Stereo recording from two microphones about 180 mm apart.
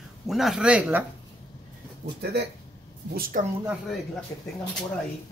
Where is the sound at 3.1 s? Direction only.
55° right (ahead or behind).